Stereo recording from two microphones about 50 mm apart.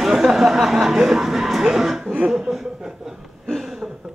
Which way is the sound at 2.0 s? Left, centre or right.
Right.